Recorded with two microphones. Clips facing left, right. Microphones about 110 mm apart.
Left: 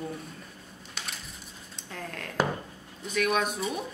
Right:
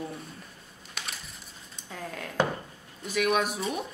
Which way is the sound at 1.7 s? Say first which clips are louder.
Right 1 dB; 5° right (ahead or behind).